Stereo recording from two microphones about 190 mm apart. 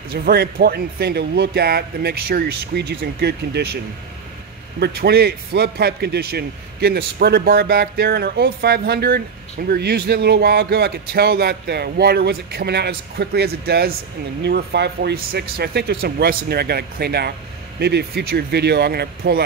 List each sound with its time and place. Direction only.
0.1 s a man's voice: 55° right (ahead or behind)
4.7 s a man's voice: 60° right (ahead or behind)